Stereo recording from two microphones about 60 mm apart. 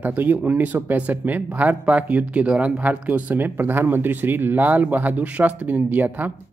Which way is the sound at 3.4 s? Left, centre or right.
Right.